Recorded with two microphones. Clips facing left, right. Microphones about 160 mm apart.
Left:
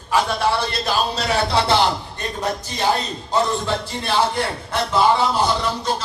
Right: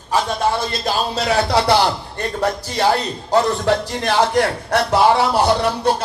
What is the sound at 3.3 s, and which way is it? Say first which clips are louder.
A man's voice: right 5 dB; 70° right (ahead or behind).